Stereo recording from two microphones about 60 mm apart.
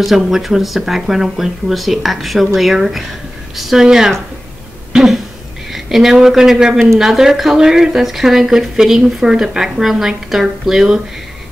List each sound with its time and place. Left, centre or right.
0.0 s speech: centre
4.9 s a sound: centre
5.7 s a woman's voice: centre